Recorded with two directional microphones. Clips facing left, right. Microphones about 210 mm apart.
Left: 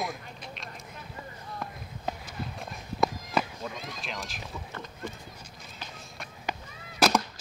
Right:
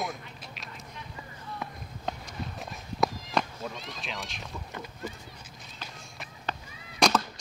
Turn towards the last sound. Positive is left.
turn(degrees=5)  # may be behind; listen again after turning